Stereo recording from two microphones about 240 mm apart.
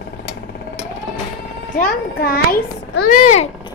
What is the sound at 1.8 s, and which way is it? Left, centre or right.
A child's voice, left.